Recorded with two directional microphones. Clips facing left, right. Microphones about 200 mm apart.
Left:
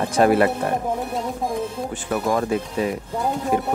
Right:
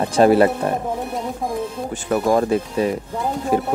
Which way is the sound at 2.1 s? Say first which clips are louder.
Right 4 dB; 35° right (ahead or behind).